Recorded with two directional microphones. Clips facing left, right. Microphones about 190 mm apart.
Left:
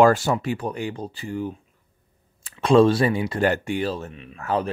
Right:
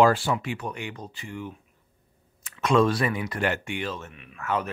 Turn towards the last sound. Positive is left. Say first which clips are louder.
# left 4 dB
turn(degrees=30)  # may be behind; listen again after turning